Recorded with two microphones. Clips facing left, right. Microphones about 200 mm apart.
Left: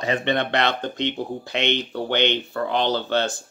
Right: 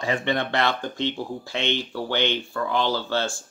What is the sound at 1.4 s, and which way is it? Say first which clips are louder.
Speech: left 4 dB; 20° left (ahead or behind).